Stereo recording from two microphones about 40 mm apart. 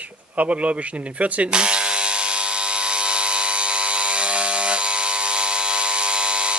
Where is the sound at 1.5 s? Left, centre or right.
Right.